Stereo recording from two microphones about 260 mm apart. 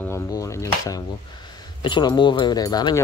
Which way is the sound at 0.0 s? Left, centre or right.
Centre.